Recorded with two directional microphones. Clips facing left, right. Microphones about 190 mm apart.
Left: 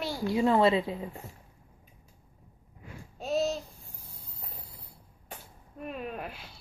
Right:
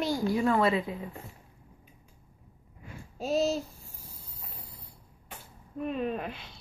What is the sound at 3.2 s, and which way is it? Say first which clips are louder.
Speech: right 2 dB; centre (ahead or behind).